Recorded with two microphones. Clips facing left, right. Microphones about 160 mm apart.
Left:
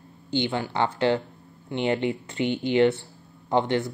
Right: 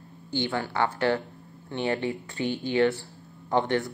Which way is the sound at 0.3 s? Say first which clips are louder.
Left 2 dB; 20° left (ahead or behind).